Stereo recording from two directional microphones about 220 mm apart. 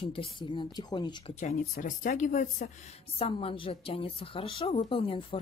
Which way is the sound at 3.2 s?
25° left (ahead or behind).